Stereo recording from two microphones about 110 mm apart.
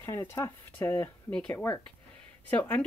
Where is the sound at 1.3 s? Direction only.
10° left (ahead or behind).